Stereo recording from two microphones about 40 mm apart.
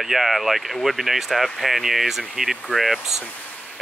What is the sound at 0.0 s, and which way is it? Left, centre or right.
Speech, centre.